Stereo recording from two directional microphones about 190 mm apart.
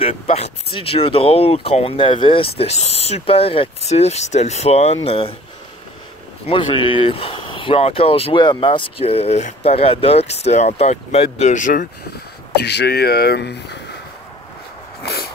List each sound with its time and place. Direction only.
0.0 s speech: 30° left (ahead or behind)
6.4 s speech: 25° left (ahead or behind); by 11.9 s 45° left (ahead or behind)
12.5 s speech: 60° left (ahead or behind)